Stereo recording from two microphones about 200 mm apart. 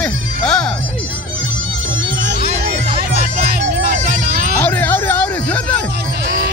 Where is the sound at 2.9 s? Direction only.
50° right (ahead or behind).